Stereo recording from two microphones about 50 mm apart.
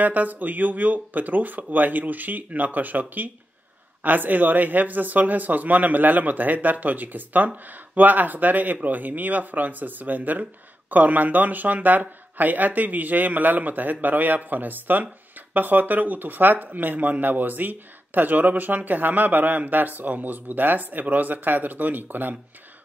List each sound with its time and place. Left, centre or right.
0.0 s speech: right